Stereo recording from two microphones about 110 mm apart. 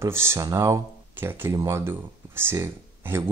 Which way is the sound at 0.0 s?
25° right (ahead or behind).